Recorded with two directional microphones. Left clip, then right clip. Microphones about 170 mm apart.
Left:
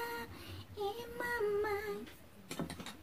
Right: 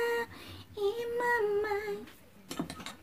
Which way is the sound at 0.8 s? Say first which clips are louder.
Right 8 dB; 35° right (ahead or behind).